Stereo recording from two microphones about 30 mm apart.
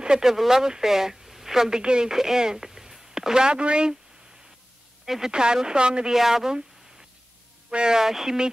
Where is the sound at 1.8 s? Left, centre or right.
Right.